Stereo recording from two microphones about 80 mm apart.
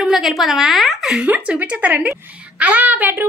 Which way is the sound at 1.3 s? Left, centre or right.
Centre.